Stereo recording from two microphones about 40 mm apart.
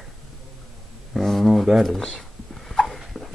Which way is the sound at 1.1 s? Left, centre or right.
Centre.